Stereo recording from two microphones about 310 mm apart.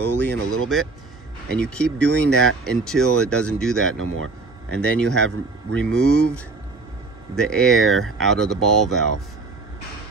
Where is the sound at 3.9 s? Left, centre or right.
Right.